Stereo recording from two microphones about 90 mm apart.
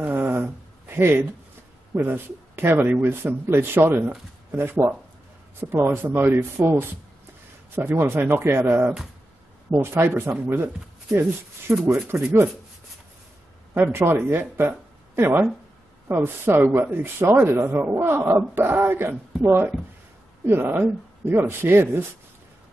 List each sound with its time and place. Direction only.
0.0 s a sound: 25° right (ahead or behind)
2.0 s speech: 25° right (ahead or behind)
11.8 s speech: 25° right (ahead or behind)
13.9 s speech: 25° right (ahead or behind)